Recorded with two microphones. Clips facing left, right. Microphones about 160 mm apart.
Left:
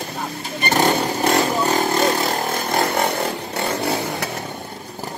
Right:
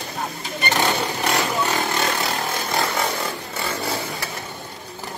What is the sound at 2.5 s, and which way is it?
Chainsaw, 55° left (ahead or behind).